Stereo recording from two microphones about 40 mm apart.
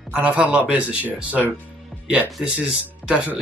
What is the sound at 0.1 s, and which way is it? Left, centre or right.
Speech, right.